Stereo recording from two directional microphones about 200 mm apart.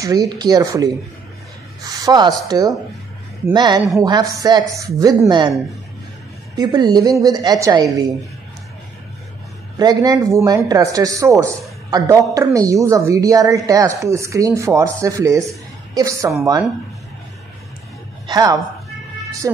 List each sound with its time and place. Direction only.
0.0 s speech: 20° right (ahead or behind)
9.8 s a woman's voice: 20° right (ahead or behind)
18.2 s a woman's voice: 20° right (ahead or behind)